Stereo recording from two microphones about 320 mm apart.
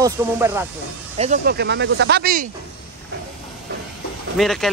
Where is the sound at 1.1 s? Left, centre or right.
Right.